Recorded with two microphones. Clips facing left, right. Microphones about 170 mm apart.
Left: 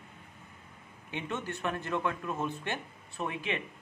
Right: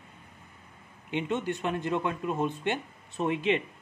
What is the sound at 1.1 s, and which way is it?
Speech, 20° right (ahead or behind).